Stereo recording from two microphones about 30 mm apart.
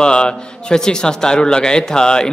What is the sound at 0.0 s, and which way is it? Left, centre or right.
A man's voice, left.